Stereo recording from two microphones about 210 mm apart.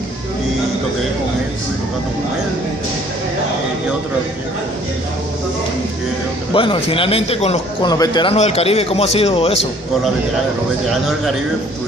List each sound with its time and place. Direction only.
6.5 s a man's voice: 25° left (ahead or behind)